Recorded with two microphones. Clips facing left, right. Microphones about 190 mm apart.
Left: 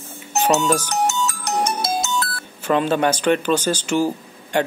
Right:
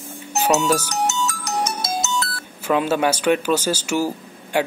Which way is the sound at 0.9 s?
55° left (ahead or behind).